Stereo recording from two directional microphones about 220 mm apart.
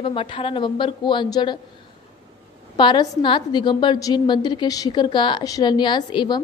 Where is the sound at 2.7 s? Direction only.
20° left (ahead or behind).